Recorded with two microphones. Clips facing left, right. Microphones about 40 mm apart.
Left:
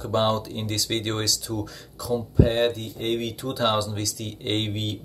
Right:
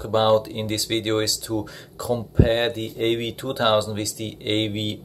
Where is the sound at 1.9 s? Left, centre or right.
Right.